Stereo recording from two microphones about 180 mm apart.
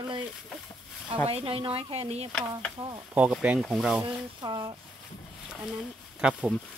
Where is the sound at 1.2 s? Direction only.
30° right (ahead or behind).